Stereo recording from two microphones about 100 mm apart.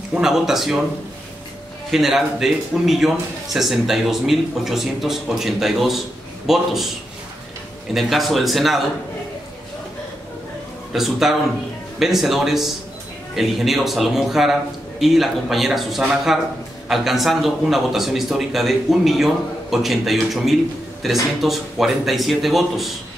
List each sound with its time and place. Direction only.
0.1 s speech: 5° right (ahead or behind)
1.9 s speech: 5° right (ahead or behind)
7.9 s speech: centre (ahead or behind)
10.9 s speech: 5° right (ahead or behind)